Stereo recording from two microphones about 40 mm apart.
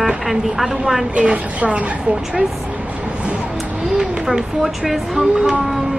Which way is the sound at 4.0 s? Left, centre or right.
Centre.